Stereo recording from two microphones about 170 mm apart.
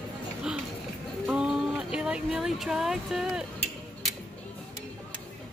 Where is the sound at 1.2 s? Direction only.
5° right (ahead or behind).